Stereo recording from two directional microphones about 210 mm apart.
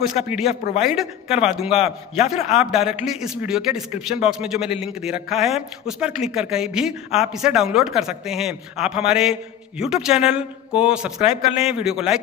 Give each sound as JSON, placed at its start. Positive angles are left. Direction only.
{"t": 0.0, "sound": "speech", "side_deg": 0}
{"t": 1.8, "sound": "a man's voice", "side_deg": 30}
{"t": 2.5, "sound": "speech", "side_deg": 0}